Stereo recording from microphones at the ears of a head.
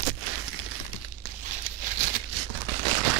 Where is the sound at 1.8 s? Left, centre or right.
Right.